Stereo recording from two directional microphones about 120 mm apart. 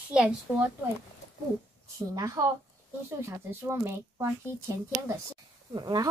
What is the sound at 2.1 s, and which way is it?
Speech, 30° right (ahead or behind).